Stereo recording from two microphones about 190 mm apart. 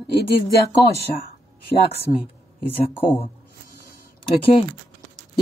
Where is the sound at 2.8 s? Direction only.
30° left (ahead or behind).